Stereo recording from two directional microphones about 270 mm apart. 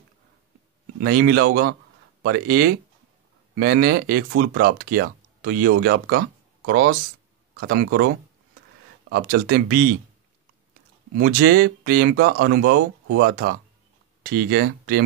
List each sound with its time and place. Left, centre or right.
1.0 s speech: right
9.1 s speech: right
11.1 s speech: right
13.0 s speech: right
13.3 s speech: right